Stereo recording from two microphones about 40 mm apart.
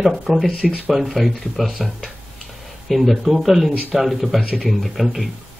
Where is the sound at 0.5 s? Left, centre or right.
Left.